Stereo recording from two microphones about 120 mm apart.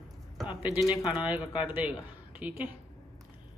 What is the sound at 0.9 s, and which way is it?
Speech, 40° left (ahead or behind).